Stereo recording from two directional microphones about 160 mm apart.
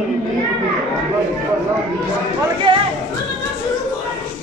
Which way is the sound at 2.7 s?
30° right (ahead or behind).